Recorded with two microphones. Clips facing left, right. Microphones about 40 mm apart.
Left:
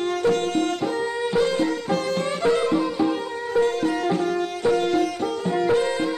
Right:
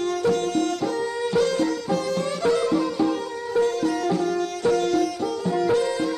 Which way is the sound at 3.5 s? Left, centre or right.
Left.